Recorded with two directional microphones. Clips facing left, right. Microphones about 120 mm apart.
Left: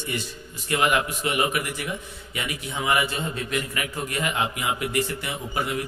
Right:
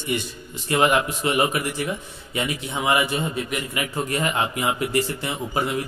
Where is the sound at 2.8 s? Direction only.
20° right (ahead or behind).